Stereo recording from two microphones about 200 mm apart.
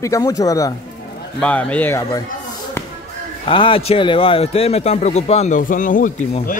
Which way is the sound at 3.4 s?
25° left (ahead or behind).